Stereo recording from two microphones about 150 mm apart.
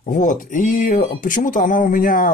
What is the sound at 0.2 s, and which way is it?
Speech, 60° left (ahead or behind).